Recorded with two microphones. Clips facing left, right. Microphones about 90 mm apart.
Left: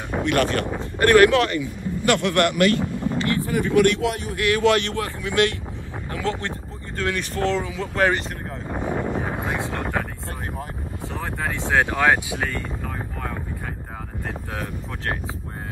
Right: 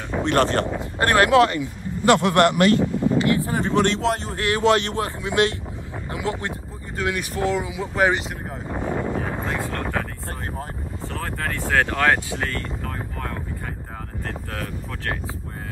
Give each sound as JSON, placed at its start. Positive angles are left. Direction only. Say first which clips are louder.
{"t": 0.2, "sound": "speech", "louder": "right 2 dB", "side_deg": -25}
{"t": 8.7, "sound": "wind noise", "louder": "even", "side_deg": 15}
{"t": 11.1, "sound": "a sound", "louder": "even", "side_deg": 15}